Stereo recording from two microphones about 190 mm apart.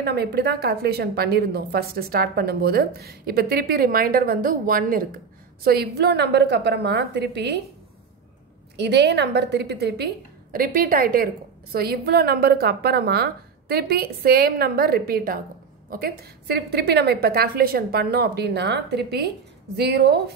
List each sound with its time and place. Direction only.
0.0 s a woman's voice: 55° right (ahead or behind)
8.7 s a woman's voice: 60° right (ahead or behind)